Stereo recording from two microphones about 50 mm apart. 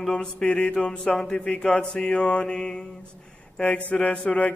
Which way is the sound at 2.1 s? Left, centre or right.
Left.